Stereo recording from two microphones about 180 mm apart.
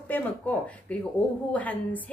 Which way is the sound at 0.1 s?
10° left (ahead or behind).